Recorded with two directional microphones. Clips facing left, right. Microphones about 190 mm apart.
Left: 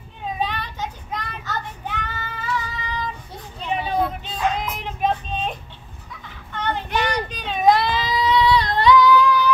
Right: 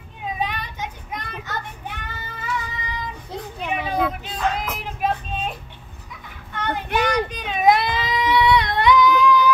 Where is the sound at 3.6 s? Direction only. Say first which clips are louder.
Left 1 dB; 90° right.